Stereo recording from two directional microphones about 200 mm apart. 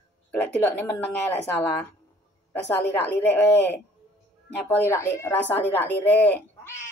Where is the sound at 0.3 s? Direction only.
10° left (ahead or behind).